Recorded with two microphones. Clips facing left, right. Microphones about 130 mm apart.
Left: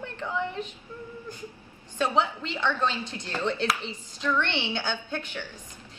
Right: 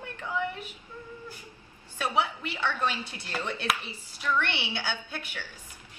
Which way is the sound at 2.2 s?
10° right (ahead or behind).